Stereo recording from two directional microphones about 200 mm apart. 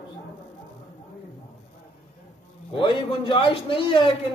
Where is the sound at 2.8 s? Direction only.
25° left (ahead or behind).